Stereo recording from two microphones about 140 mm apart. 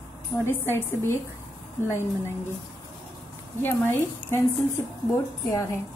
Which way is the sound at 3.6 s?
15° left (ahead or behind).